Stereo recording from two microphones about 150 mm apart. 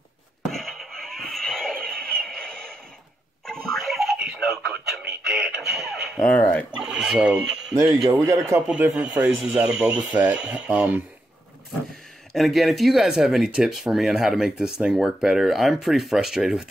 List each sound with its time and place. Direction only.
0.5 s a sound: centre (ahead or behind)
3.4 s music: 5° left (ahead or behind)
6.8 s speech: 5° right (ahead or behind)
7.7 s speech: 25° right (ahead or behind)
12.3 s speech: centre (ahead or behind)